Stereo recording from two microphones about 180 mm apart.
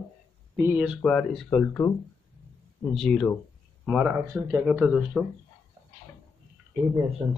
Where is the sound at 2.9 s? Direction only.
5° left (ahead or behind).